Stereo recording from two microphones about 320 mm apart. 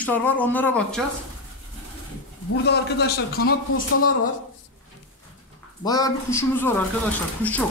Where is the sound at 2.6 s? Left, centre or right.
Left.